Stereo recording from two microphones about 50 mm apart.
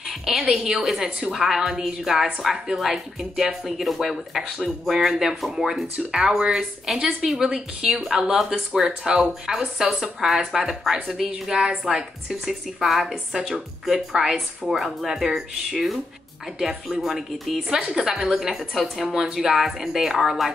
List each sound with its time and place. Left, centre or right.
0.2 s a woman's voice: centre
11.9 s a woman's voice: centre